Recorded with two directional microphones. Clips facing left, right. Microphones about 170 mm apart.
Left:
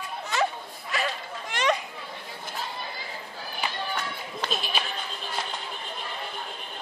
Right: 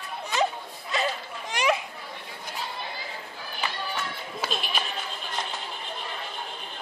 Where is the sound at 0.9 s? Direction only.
25° right (ahead or behind).